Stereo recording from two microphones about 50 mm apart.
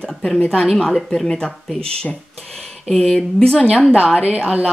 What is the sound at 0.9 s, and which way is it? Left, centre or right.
Speech, centre.